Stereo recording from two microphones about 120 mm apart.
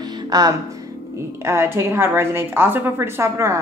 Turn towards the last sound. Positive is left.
turn(degrees=-25)  # may be behind; listen again after turning